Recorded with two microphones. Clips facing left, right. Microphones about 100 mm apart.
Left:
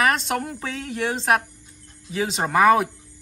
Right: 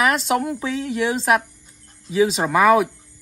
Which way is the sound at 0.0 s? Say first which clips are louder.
Right 3 dB; 5° right (ahead or behind).